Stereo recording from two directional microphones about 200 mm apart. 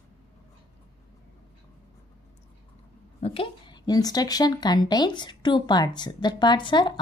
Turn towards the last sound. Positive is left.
turn(degrees=25)  # may be behind; listen again after turning